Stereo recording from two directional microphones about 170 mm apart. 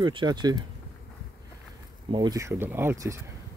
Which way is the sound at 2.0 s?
25° right (ahead or behind).